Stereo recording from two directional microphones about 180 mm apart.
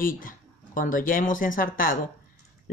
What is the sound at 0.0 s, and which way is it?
Speech, 50° left (ahead or behind).